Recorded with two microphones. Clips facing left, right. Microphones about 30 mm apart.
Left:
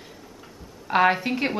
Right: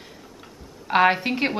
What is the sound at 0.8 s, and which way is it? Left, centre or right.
Speech, centre.